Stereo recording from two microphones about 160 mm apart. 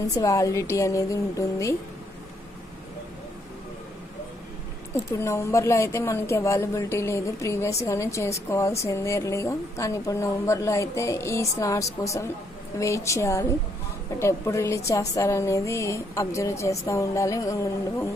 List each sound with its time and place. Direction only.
0.0 s a woman's voice: 20° left (ahead or behind)
4.9 s a woman's voice: 15° left (ahead or behind)